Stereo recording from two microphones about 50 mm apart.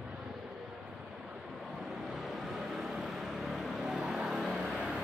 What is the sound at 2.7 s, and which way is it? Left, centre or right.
Vehicle, centre.